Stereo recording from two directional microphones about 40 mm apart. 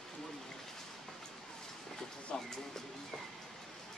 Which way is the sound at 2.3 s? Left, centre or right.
Centre.